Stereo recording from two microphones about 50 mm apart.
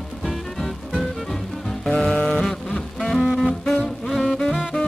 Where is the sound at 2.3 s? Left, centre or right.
Centre.